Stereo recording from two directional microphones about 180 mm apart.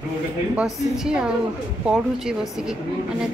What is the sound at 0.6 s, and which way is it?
A woman's voice, 5° right (ahead or behind).